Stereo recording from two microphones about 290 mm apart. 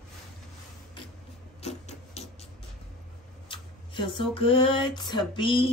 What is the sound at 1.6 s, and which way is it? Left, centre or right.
Rub, left.